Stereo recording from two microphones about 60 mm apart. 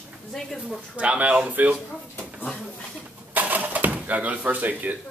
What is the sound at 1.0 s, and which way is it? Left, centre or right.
Speech, centre.